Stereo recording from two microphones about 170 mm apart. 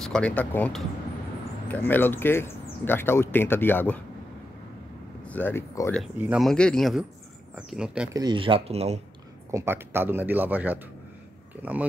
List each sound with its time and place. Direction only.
0.0 s speech: 5° left (ahead or behind)
5.2 s speech: 10° left (ahead or behind)
6.1 s speech: 5° right (ahead or behind)
8.1 s speech: 25° right (ahead or behind)
9.5 s a man's voice: 15° right (ahead or behind)